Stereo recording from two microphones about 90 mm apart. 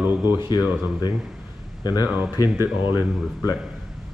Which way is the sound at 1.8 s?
45° left (ahead or behind).